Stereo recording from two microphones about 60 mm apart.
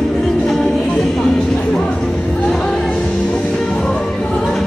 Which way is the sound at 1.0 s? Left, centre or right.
Centre.